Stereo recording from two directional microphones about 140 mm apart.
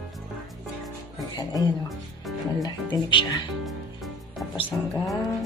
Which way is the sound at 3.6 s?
Centre (ahead or behind).